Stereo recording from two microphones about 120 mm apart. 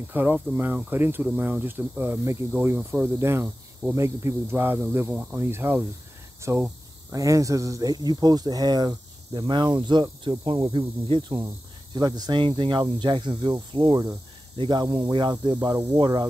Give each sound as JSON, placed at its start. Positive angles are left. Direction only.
{"t": 0.1, "sound": "speech", "side_deg": -15}
{"t": 10.7, "sound": "speech", "side_deg": -45}